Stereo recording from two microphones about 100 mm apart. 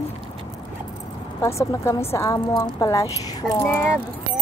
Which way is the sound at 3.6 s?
20° left (ahead or behind).